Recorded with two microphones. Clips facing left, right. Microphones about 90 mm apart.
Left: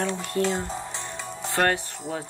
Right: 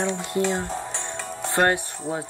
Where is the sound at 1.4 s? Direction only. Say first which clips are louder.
Right 2 dB; 25° right (ahead or behind).